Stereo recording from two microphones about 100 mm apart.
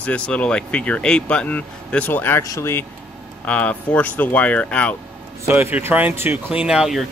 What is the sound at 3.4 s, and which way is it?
Speech, 10° left (ahead or behind).